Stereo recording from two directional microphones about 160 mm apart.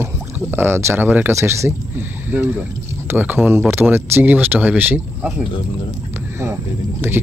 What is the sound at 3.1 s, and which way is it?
Speech, 10° right (ahead or behind).